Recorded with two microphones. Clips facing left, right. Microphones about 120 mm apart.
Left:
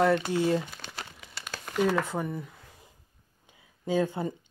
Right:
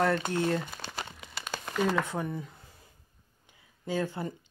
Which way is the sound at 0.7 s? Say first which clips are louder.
Right 3 dB; centre (ahead or behind).